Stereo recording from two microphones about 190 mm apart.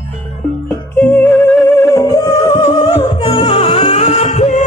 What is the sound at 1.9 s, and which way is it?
Music, 20° left (ahead or behind).